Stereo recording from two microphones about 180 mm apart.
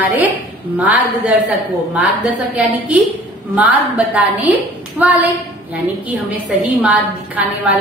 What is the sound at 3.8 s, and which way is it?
Speech, 10° right (ahead or behind).